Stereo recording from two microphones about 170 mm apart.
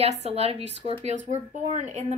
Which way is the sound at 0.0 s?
40° right (ahead or behind).